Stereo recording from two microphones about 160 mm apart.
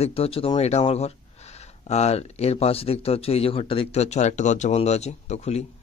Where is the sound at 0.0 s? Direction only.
40° left (ahead or behind).